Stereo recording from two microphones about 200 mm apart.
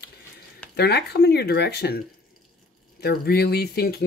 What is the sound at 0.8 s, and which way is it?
Speech, 55° left (ahead or behind).